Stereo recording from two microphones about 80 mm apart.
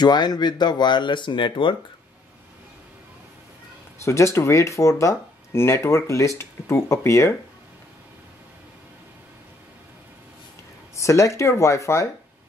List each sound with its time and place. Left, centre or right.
0.0 s speech: left
4.0 s speech: left
11.0 s speech: left